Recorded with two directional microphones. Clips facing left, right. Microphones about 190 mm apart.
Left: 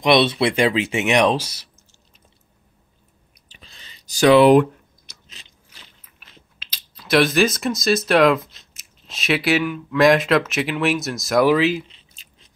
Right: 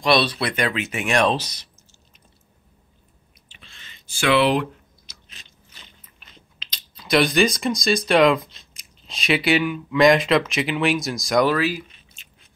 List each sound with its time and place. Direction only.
0.0 s speech: 20° left (ahead or behind)
3.4 s clicking: 35° left (ahead or behind)
5.7 s speech: 5° left (ahead or behind)
11.5 s speech: 20° left (ahead or behind)